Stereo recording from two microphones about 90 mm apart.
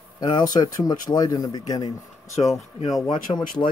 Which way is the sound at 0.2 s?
50° left (ahead or behind).